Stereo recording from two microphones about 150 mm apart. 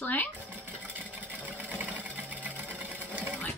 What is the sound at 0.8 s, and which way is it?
Vehicle, 10° right (ahead or behind).